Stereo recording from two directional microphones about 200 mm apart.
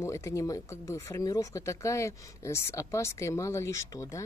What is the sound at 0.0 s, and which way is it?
Speech, 15° left (ahead or behind).